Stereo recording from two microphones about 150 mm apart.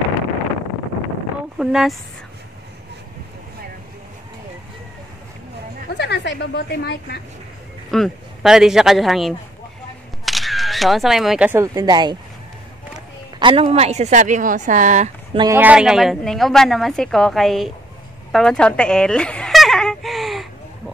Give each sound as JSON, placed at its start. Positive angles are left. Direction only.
{"t": 1.6, "sound": "speech", "side_deg": -5}
{"t": 6.0, "sound": "a woman's voice", "side_deg": 90}
{"t": 7.9, "sound": "speech", "side_deg": 0}
{"t": 13.4, "sound": "a woman's voice", "side_deg": -35}
{"t": 15.5, "sound": "speech", "side_deg": -10}
{"t": 18.3, "sound": "a sound", "side_deg": 5}